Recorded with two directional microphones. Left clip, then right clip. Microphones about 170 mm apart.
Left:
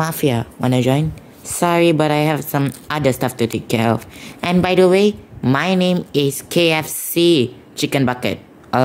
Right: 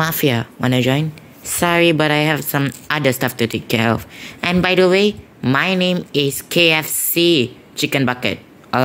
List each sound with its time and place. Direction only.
0.0 s a woman's voice: centre (ahead or behind)